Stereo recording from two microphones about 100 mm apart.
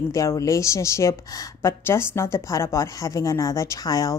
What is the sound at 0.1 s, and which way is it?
A woman's voice, 30° left (ahead or behind).